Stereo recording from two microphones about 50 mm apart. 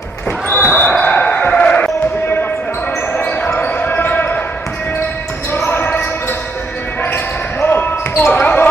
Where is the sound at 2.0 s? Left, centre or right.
Left.